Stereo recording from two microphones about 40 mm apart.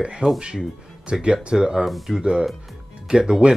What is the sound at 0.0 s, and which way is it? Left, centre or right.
Speech, right.